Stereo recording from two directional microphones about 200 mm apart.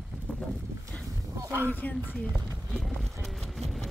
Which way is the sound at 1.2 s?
15° right (ahead or behind).